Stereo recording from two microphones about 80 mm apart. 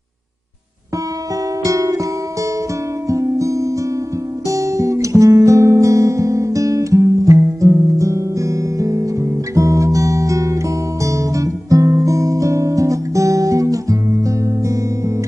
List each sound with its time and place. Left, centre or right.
1.6 s music: right
3.1 s music: right
4.5 s guitar: right